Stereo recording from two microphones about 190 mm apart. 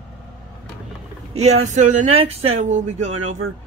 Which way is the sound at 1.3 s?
35° right (ahead or behind).